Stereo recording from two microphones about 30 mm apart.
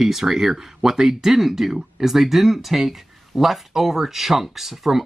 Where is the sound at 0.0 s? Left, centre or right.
Centre.